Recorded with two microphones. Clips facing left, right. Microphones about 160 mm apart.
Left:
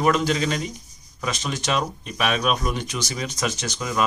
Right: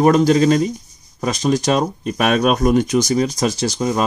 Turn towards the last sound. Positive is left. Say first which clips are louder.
# right 7 dB
turn(degrees=-35)  # may be behind; listen again after turning